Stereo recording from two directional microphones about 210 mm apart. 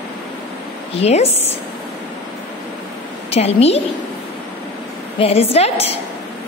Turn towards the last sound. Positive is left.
turn(degrees=30)  # may be behind; listen again after turning